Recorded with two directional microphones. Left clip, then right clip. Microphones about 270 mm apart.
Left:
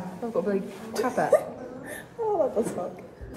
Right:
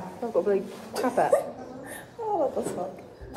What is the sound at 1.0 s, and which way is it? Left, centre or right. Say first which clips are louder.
Speech: right 1 dB; right.